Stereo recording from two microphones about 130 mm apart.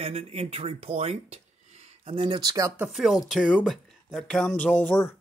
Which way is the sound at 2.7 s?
5° right (ahead or behind).